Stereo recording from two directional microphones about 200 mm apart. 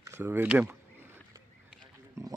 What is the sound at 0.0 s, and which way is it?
Speech, 15° right (ahead or behind).